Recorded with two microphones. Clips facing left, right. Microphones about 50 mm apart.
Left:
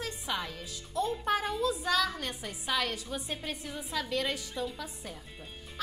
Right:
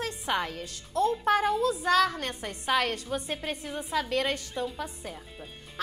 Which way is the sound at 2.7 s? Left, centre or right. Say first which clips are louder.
Right 5 dB; right.